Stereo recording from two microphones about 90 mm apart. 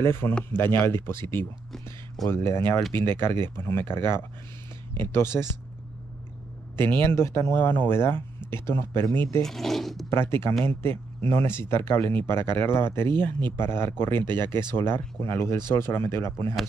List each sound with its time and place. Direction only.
0.0 s speech: 25° left (ahead or behind)
6.8 s speech: 25° left (ahead or behind)
9.4 s speech: 5° left (ahead or behind)
10.0 s speech: 30° left (ahead or behind)